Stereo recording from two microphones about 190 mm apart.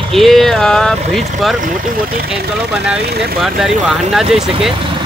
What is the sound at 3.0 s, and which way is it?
Speech, 60° right (ahead or behind).